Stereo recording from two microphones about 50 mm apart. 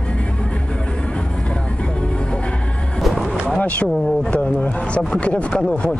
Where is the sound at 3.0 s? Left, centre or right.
Centre.